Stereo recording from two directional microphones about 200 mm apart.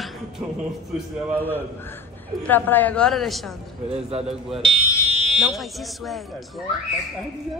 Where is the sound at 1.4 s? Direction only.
10° left (ahead or behind).